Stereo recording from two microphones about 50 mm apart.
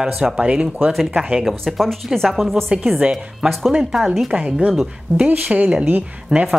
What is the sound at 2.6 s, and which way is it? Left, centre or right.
Speech, centre.